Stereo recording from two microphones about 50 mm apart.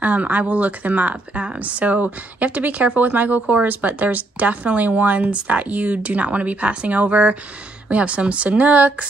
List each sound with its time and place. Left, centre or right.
0.0 s speech: right